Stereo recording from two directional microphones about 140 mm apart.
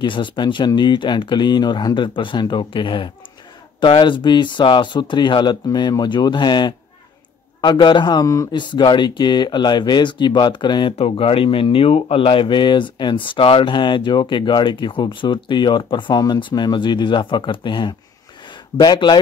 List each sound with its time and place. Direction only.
0.0 s a man's voice: 35° left (ahead or behind)